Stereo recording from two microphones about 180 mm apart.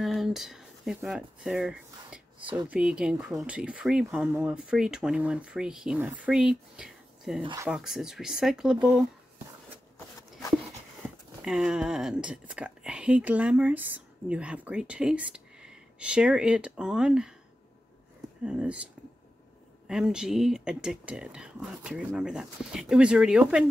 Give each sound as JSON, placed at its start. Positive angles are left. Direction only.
{"t": 0.0, "sound": "speech", "side_deg": 0}
{"t": 7.4, "sound": "speech", "side_deg": -20}
{"t": 7.7, "sound": "speech", "side_deg": -5}
{"t": 11.4, "sound": "speech", "side_deg": -5}
{"t": 18.4, "sound": "speech", "side_deg": -5}
{"t": 19.9, "sound": "speech", "side_deg": -5}